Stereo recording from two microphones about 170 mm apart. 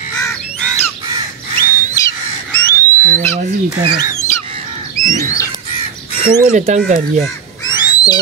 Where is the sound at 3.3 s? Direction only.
30° right (ahead or behind).